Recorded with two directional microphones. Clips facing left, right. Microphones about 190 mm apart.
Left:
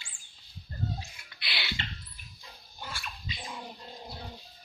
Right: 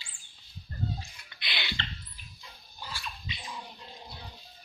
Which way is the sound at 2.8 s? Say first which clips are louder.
Even; 50° left (ahead or behind).